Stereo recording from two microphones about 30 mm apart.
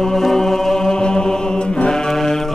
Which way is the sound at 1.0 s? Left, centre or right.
Left.